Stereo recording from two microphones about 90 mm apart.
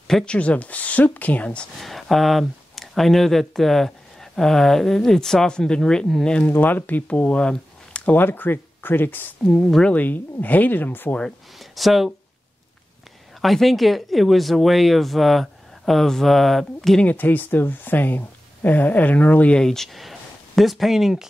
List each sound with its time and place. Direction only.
0.1 s speech: 10° left (ahead or behind)
1.8 s speech: centre (ahead or behind); by 9.5 s 20° left (ahead or behind)
9.5 s speech: 10° left (ahead or behind)
9.9 s speech: 20° left (ahead or behind)
11.5 s speech: centre (ahead or behind)
13.4 s speech: centre (ahead or behind)
17.0 s speech: 20° left (ahead or behind); by 21.3 s 5° right (ahead or behind)